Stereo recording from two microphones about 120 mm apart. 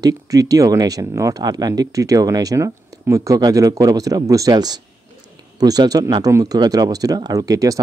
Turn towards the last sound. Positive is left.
turn(degrees=-30)  # may be behind; listen again after turning